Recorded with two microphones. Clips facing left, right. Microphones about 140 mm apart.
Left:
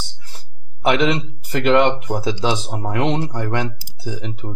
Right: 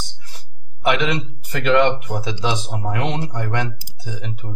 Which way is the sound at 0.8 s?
30° left (ahead or behind).